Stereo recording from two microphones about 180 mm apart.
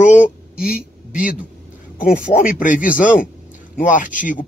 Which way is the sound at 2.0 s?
45° left (ahead or behind).